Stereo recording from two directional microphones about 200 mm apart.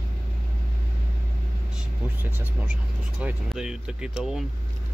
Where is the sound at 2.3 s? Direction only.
10° right (ahead or behind).